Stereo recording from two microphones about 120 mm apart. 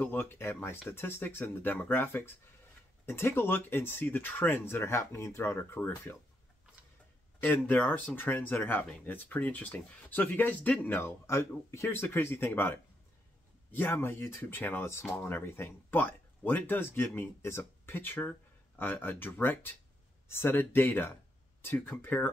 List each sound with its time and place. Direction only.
0.0 s speech: 15° left (ahead or behind)
7.3 s speech: 15° left (ahead or behind)